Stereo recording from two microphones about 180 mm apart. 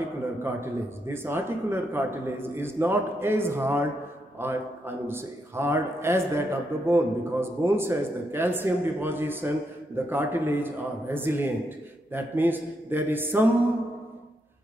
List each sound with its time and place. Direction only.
0.4 s a man's voice: 15° right (ahead or behind)